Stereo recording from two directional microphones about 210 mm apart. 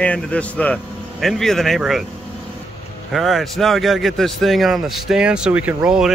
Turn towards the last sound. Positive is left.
turn(degrees=-5)  # may be behind; listen again after turning